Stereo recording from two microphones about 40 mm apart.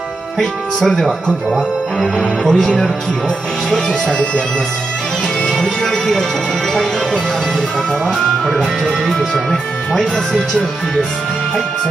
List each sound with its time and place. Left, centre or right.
0.4 s speech: centre
3.7 s speech: centre
5.4 s music: centre
9.1 s speech: centre